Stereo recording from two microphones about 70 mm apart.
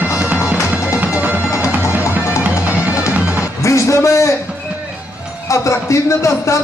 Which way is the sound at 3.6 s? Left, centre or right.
Left.